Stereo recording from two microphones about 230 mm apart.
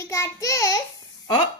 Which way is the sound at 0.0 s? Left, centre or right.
Centre.